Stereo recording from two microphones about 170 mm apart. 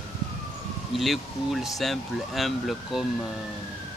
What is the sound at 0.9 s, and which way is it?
Speech, centre (ahead or behind).